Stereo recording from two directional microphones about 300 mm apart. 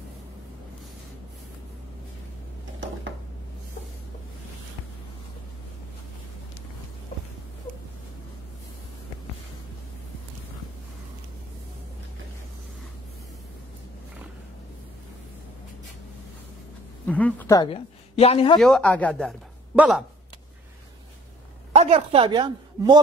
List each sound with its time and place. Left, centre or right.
17.0 s a woman's voice: centre
18.6 s a man's voice: centre
21.7 s speech: centre